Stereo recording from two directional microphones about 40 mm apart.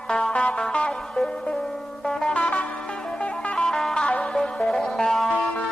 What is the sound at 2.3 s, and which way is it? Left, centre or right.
Music, left.